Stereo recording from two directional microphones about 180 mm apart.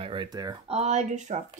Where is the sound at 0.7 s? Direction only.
35° right (ahead or behind).